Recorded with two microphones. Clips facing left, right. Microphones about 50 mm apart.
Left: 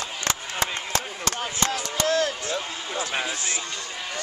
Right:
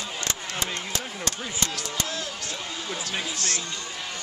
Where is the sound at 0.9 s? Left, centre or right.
Left.